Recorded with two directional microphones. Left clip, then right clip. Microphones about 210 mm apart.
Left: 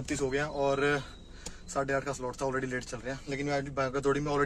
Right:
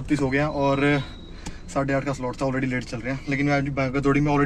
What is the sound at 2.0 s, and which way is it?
Speech, 5° left (ahead or behind).